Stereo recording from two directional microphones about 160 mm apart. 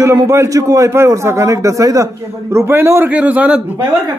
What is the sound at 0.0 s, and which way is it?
A man's voice, 20° right (ahead or behind).